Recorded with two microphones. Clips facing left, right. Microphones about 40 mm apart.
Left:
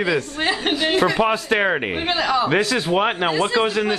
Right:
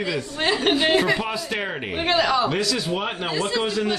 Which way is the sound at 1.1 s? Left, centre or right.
Left.